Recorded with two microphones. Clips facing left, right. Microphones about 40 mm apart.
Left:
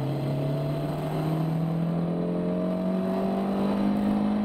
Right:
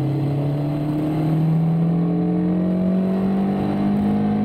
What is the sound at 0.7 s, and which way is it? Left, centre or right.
Vehicle, right.